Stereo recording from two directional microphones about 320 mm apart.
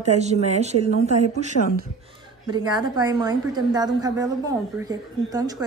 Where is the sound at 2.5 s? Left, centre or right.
Centre.